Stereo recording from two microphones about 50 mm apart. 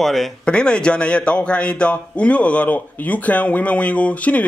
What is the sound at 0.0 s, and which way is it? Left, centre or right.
Speech, centre.